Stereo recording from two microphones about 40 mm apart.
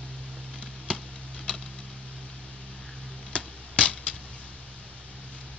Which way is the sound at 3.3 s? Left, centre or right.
Left.